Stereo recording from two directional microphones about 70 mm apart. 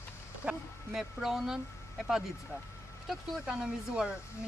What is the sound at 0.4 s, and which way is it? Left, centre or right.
Speech, centre.